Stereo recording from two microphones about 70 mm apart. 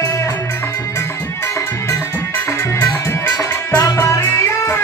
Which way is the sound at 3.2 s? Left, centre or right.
Left.